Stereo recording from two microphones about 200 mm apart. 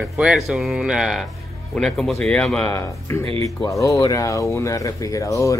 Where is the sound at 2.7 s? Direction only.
15° left (ahead or behind).